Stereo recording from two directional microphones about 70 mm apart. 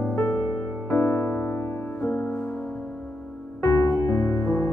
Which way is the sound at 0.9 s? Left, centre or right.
Left.